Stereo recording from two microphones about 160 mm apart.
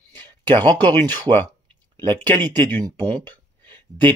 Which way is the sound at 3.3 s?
30° right (ahead or behind).